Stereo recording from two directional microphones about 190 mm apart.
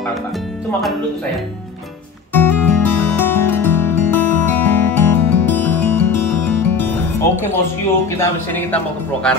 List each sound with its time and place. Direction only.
2.3 s music: 10° left (ahead or behind)
8.2 s speech: 10° left (ahead or behind)